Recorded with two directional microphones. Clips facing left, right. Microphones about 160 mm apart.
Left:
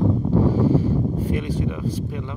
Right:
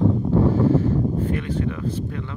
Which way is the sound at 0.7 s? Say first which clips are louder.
Even; 10° left (ahead or behind).